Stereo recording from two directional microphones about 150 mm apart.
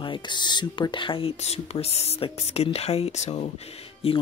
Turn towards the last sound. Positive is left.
turn(degrees=40)  # may be behind; listen again after turning